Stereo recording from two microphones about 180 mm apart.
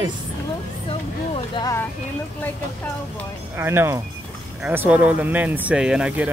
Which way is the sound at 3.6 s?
15° right (ahead or behind).